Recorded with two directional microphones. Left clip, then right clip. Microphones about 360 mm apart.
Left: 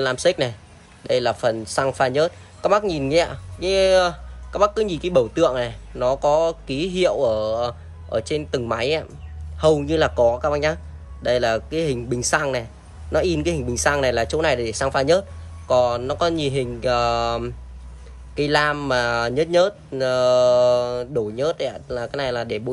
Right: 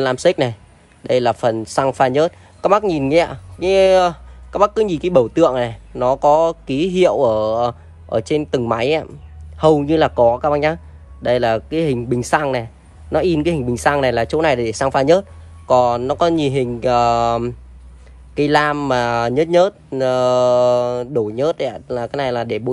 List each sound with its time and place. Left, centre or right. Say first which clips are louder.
0.0 s speech: right 4 dB; centre